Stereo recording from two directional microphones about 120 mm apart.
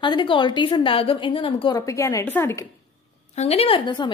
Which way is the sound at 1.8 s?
25° left (ahead or behind).